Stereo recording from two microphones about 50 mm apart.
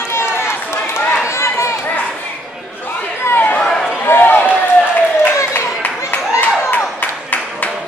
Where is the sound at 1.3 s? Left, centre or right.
Left.